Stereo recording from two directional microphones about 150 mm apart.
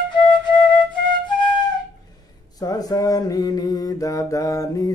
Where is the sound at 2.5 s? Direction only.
25° left (ahead or behind).